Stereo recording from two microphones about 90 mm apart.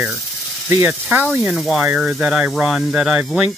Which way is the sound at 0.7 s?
10° right (ahead or behind).